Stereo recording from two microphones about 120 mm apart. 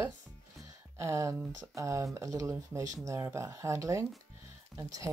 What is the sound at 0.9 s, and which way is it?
Speech, 25° right (ahead or behind).